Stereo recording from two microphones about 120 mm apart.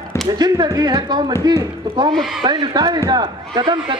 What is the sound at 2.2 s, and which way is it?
Speech, centre (ahead or behind).